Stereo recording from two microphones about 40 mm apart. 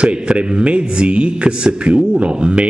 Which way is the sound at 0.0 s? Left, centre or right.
Right.